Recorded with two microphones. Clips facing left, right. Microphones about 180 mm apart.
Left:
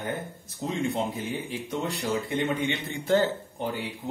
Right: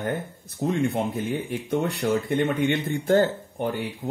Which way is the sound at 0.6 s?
55° right (ahead or behind).